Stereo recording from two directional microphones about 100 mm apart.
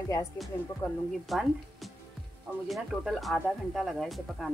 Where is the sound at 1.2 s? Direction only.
Centre (ahead or behind).